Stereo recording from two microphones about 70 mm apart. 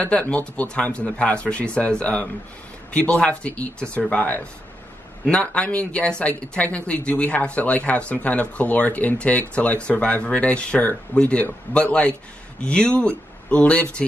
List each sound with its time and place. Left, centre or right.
0.0 s a man's voice: centre